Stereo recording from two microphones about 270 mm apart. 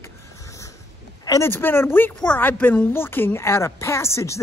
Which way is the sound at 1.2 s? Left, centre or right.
Centre.